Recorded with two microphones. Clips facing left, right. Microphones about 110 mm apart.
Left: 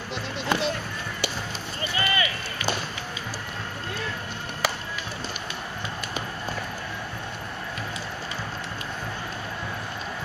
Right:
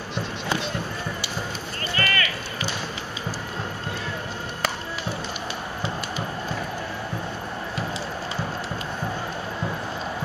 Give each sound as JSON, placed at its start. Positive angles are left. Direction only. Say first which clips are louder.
{"t": 2.0, "sound": "run", "louder": "even", "side_deg": 15}